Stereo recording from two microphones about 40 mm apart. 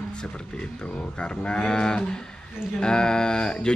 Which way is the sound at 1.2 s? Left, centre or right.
Left.